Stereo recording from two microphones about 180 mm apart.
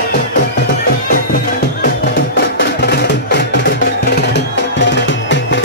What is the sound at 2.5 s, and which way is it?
Music, 70° left (ahead or behind).